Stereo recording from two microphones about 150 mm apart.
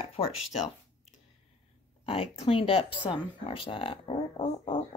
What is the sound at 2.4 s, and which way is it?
Speech, 35° left (ahead or behind).